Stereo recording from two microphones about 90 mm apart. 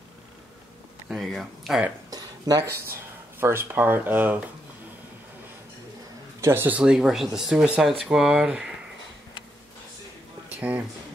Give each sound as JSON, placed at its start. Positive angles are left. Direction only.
{"t": 1.0, "sound": "speech", "side_deg": 0}
{"t": 2.0, "sound": "a sound", "side_deg": -45}
{"t": 3.3, "sound": "speech", "side_deg": -30}
{"t": 6.4, "sound": "speech", "side_deg": -25}
{"t": 6.8, "sound": "speech", "side_deg": -10}
{"t": 10.5, "sound": "speech", "side_deg": -15}